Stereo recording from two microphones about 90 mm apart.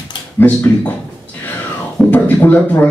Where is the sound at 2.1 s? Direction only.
20° left (ahead or behind).